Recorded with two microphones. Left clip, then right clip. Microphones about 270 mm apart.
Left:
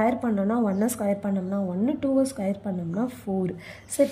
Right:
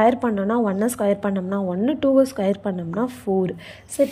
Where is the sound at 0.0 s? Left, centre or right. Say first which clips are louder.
Right 6 dB; centre.